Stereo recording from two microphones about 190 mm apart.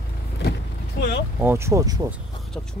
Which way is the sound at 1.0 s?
60° left (ahead or behind).